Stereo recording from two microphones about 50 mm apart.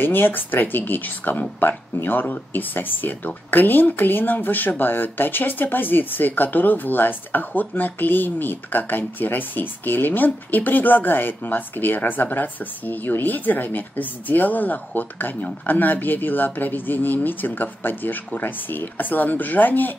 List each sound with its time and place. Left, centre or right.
0.0 s speech: left